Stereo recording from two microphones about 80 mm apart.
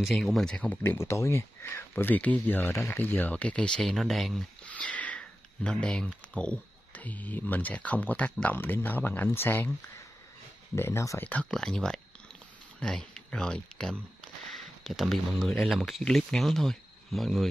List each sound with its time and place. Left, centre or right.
0.0 s speech: centre
0.8 s speech: left; by 4.5 s centre
4.6 s speech: centre
10.8 s speech: left
11.2 s speech: centre